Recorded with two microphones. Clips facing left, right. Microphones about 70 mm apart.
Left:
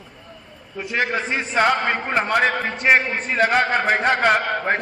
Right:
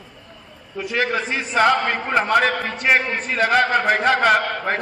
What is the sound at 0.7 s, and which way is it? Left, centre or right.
A man's voice, left.